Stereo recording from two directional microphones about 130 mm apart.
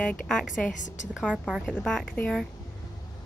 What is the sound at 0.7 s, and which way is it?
Speech, 75° left (ahead or behind).